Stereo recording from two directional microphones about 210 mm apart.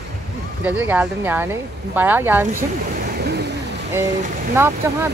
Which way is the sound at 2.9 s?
45° right (ahead or behind).